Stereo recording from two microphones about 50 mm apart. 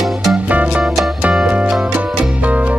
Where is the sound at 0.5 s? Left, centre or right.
Right.